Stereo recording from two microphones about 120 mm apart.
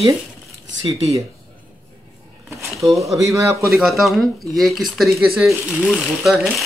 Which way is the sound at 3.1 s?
25° right (ahead or behind).